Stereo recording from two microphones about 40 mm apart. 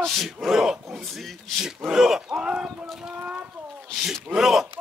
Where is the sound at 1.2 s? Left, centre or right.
Centre.